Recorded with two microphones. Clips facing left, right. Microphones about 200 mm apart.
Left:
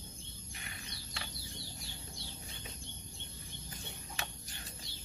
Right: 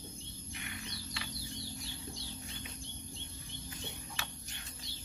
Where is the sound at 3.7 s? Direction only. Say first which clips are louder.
Right 2 dB; 35° left (ahead or behind).